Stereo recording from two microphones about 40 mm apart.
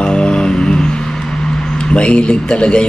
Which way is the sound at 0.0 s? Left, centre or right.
Left.